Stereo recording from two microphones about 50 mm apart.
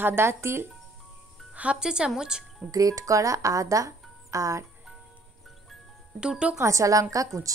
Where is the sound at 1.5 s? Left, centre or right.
Right.